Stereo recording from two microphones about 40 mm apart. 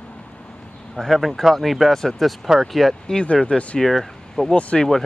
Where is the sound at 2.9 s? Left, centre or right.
Left.